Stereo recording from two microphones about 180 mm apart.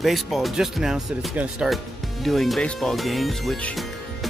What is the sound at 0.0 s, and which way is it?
Speech, centre (ahead or behind).